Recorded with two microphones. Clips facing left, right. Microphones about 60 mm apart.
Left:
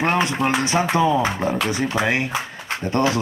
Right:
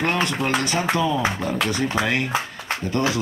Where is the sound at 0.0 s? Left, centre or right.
Left.